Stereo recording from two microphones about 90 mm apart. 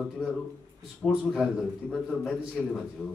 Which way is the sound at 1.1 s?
5° right (ahead or behind).